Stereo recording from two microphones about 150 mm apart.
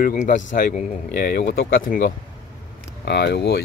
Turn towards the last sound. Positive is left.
turn(degrees=90)